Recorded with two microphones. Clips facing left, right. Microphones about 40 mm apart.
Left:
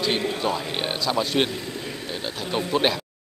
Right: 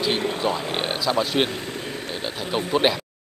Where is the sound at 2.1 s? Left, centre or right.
Centre.